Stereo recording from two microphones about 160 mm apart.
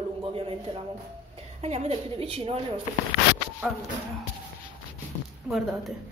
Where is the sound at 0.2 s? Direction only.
35° right (ahead or behind).